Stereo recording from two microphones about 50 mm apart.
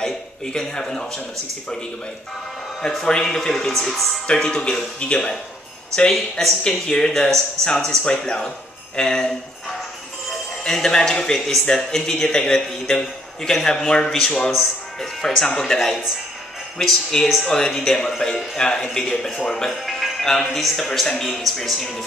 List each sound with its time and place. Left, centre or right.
0.0 s a man's voice: centre
2.9 s speech: centre
6.3 s speech: centre
10.6 s speech: centre
19.7 s speech: centre